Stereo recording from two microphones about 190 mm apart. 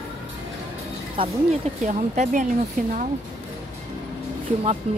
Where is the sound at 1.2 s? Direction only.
25° right (ahead or behind).